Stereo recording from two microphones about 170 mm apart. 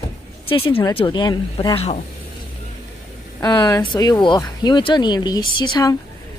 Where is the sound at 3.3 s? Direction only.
20° left (ahead or behind).